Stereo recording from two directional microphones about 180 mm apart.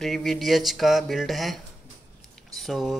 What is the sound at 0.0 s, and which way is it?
A man's voice, centre (ahead or behind).